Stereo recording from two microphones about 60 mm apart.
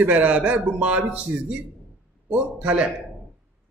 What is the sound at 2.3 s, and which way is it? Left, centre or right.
Speech, right.